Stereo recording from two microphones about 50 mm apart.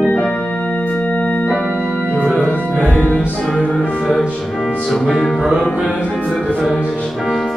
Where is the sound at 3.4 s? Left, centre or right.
Centre.